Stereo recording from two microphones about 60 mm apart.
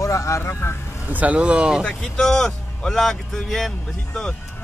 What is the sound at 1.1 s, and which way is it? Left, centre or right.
Speech, right.